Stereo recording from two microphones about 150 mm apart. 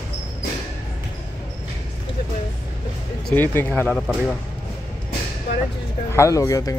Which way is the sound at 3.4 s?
15° left (ahead or behind).